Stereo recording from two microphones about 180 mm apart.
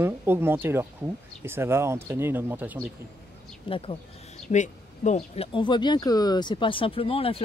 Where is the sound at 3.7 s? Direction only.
30° left (ahead or behind).